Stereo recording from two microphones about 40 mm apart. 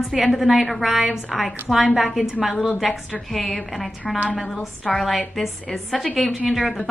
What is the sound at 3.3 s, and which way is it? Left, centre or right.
A woman's voice, centre.